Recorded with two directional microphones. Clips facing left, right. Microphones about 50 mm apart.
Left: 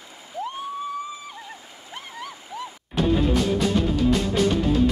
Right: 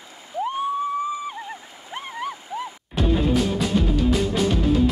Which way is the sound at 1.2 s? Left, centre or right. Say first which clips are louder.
Right 6 dB; right.